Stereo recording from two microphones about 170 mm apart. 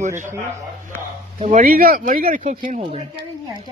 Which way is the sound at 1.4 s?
50° right (ahead or behind).